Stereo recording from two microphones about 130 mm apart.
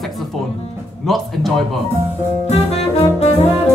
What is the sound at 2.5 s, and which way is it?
Music, 55° left (ahead or behind).